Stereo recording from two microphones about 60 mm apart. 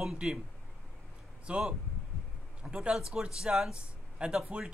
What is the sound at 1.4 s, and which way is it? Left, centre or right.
A man's voice, centre.